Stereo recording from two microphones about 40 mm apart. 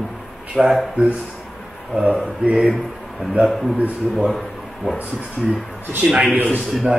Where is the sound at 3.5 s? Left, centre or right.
Centre.